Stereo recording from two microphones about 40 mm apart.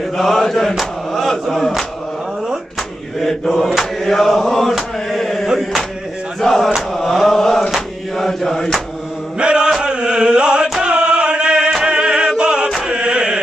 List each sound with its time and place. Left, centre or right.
0.3 s mantra: centre
0.7 s chant: centre
3.2 s mantra: centre
5.1 s chant: centre
5.6 s a sound: centre
6.4 s mantra: centre
6.9 s chant: centre
9.4 s chant: right
11.8 s music: right
12.8 s chant: right